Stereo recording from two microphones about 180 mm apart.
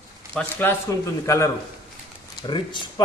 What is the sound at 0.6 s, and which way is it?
A man's voice, 15° left (ahead or behind).